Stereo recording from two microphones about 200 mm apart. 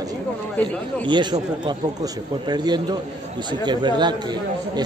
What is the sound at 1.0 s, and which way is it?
Speech, 25° right (ahead or behind).